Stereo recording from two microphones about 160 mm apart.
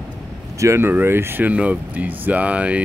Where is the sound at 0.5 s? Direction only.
15° right (ahead or behind).